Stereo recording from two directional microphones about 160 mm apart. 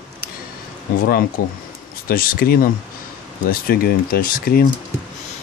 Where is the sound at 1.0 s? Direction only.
65° left (ahead or behind).